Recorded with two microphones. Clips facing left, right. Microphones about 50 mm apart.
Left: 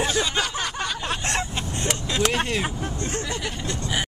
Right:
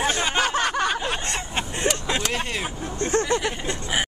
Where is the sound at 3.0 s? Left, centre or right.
Right.